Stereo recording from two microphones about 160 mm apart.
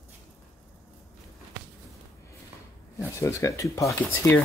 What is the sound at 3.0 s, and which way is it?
Speech, 20° left (ahead or behind).